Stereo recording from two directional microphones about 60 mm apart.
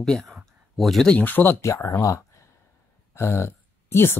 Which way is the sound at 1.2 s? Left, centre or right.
Left.